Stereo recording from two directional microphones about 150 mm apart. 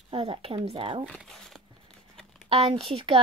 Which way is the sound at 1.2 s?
Centre (ahead or behind).